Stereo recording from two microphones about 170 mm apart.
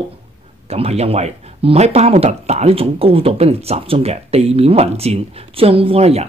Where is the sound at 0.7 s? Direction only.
35° right (ahead or behind).